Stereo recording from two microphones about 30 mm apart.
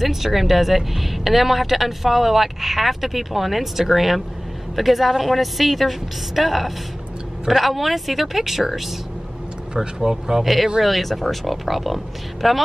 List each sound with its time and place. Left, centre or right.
0.0 s speech: centre
9.9 s speech: centre
10.4 s speech: centre